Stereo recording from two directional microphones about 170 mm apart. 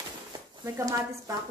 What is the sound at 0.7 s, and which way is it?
Speech, 20° right (ahead or behind).